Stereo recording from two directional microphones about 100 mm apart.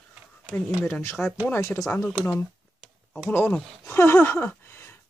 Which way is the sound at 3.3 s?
10° left (ahead or behind).